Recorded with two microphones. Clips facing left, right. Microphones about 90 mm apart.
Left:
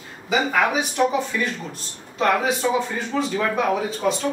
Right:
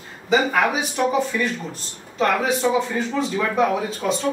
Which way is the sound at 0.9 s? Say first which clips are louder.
Even; centre (ahead or behind).